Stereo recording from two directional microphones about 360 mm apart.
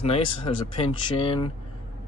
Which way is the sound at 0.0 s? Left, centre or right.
Centre.